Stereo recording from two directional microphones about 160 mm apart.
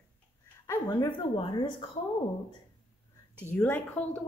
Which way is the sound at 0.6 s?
25° left (ahead or behind).